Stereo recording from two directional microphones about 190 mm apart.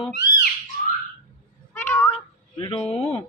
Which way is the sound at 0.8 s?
50° left (ahead or behind).